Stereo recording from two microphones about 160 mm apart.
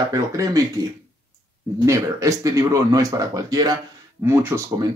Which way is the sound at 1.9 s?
20° right (ahead or behind).